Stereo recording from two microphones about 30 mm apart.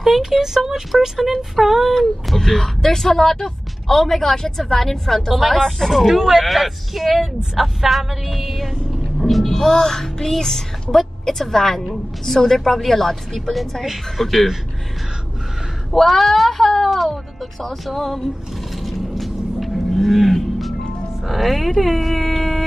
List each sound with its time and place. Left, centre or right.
0.0 s speech: centre
2.3 s speech: centre
6.0 s speech: centre
9.5 s speech: centre
15.9 s speech: centre
17.1 s speech: centre
18.8 s cattle: centre
21.3 s speech: centre